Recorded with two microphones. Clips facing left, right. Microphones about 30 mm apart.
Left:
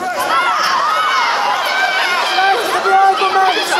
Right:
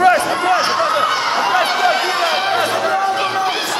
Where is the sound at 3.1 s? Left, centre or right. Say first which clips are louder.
Left 4 dB; left.